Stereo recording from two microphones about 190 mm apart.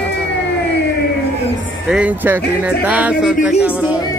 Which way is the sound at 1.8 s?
5° right (ahead or behind).